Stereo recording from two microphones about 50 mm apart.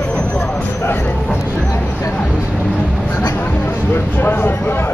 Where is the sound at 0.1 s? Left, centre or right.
Left.